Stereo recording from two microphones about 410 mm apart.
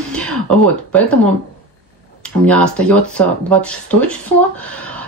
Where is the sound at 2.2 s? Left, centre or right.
Centre.